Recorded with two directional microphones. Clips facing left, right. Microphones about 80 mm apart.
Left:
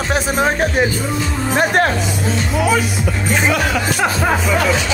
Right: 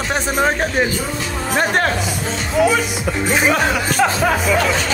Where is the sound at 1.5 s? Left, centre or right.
Centre.